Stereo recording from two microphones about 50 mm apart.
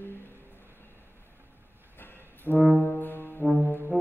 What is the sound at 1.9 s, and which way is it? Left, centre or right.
Music, left.